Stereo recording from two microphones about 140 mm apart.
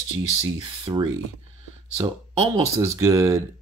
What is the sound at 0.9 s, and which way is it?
Speech, 25° right (ahead or behind).